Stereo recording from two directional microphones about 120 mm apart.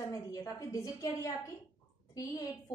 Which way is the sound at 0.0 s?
25° left (ahead or behind).